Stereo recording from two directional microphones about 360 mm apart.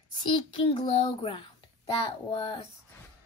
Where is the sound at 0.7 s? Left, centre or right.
Centre.